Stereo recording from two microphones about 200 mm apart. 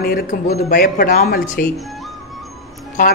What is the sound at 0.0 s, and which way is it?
Speech, 50° left (ahead or behind).